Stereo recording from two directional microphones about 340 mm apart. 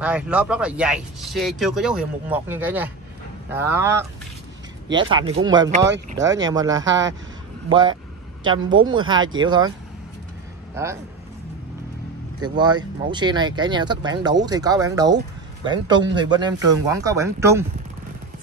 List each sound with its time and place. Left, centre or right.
0.0 s speech: centre
5.9 s speech: right
6.4 s speech: centre
6.8 s speech: right
7.7 s speech: centre
12.4 s speech: centre